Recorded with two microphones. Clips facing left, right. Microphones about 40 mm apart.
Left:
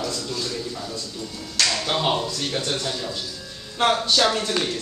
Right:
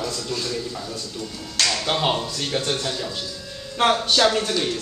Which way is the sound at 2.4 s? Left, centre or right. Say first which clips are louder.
Right 2 dB; centre.